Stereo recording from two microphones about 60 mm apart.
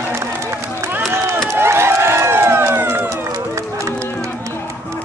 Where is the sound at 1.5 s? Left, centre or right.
Right.